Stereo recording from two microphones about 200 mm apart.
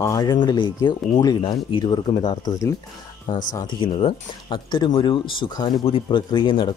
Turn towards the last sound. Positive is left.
turn(degrees=25)  # may be behind; listen again after turning